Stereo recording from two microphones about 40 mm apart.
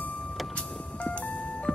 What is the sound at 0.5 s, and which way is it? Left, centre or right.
Vehicle, left.